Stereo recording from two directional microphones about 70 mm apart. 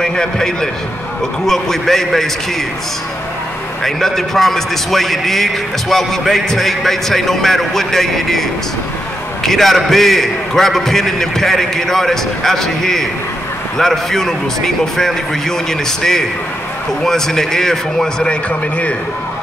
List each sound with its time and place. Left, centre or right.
0.0 s a man's voice: centre
3.8 s a man's voice: centre